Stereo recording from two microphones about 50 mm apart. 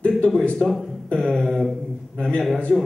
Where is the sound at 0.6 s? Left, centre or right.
Centre.